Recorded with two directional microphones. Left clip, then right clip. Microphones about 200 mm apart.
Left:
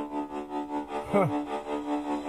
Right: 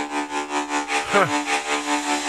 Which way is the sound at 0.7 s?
20° right (ahead or behind).